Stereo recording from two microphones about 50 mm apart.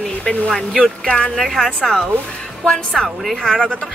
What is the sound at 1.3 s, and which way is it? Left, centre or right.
Speech, centre.